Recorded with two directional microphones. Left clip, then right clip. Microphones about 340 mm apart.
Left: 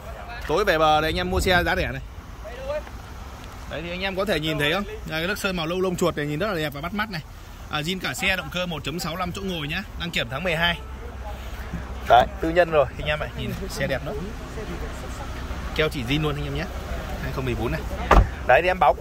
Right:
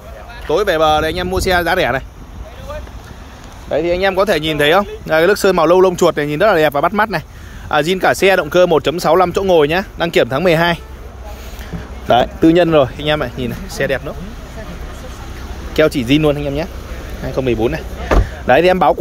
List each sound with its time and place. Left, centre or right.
0.5 s speech: centre
3.7 s speech: centre
12.4 s speech: centre
13.7 s speech: centre
15.7 s speech: centre